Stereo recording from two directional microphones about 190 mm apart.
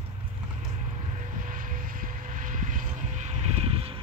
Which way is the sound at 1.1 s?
40° right (ahead or behind).